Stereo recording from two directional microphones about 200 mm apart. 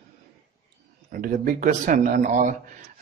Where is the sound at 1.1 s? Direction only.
45° right (ahead or behind).